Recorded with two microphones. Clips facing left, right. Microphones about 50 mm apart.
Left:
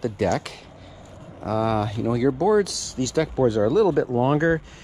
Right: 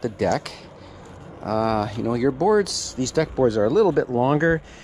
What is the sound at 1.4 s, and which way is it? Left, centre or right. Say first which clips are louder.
Speech: right 1 dB; right.